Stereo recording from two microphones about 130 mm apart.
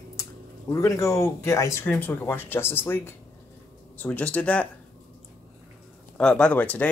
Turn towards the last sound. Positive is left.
turn(degrees=10)  # may be behind; listen again after turning